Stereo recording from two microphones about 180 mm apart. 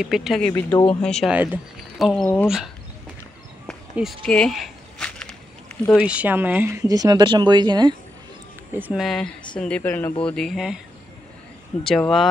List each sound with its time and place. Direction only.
0.0 s speech: centre (ahead or behind)
0.5 s speech: 15° left (ahead or behind)
1.0 s speech: 5° left (ahead or behind)
1.3 s speech: 10° right (ahead or behind)
3.9 s speech: centre (ahead or behind)
4.3 s walk: 5° left (ahead or behind)
6.0 s speech: 10° right (ahead or behind); by 7.9 s 25° right (ahead or behind)
8.7 s speech: 10° right (ahead or behind)
9.0 s speech: centre (ahead or behind)
11.8 s speech: centre (ahead or behind)